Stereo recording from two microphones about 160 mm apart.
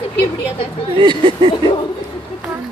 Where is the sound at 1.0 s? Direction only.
30° right (ahead or behind).